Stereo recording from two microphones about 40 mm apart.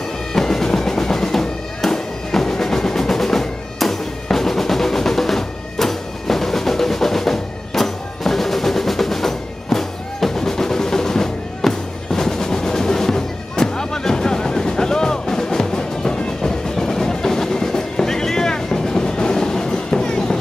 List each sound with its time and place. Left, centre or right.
0.3 s music: centre